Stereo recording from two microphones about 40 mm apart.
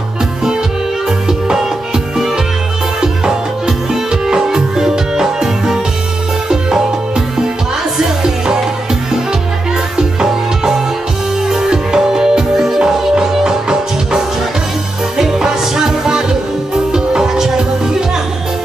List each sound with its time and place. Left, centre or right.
2.1 s music: centre
9.9 s music: centre